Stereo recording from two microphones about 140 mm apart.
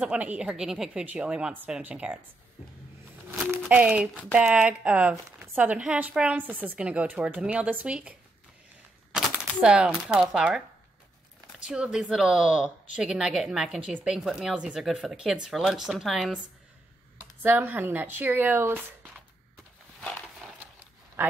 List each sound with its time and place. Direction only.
0.0 s a woman's voice: 10° right (ahead or behind)
3.3 s speech: 20° right (ahead or behind)
3.6 s a woman's voice: 10° right (ahead or behind)
9.6 s a woman's voice: 5° right (ahead or behind)
11.6 s speech: 5° right (ahead or behind)
17.4 s a woman's voice: 15° right (ahead or behind)